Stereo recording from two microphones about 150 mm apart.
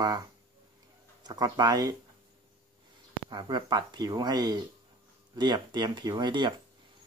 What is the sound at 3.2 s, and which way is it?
Speech, 30° right (ahead or behind).